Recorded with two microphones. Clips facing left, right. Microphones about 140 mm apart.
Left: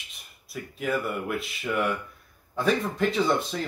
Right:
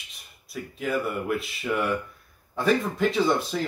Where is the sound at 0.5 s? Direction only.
Centre (ahead or behind).